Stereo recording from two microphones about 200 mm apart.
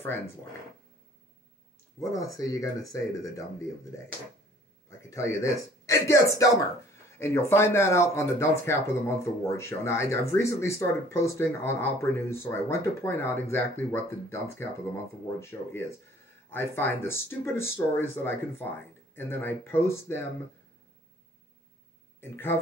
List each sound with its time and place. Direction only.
2.0 s speech: 15° left (ahead or behind)
4.8 s speech: 15° left (ahead or behind)
22.2 s speech: 10° left (ahead or behind)